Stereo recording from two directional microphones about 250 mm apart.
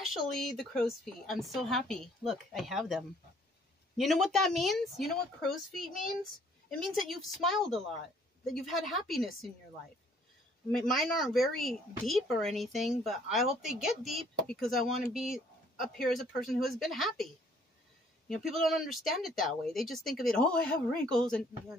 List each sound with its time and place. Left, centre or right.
0.0 s speech: centre
10.7 s speech: centre
18.3 s speech: centre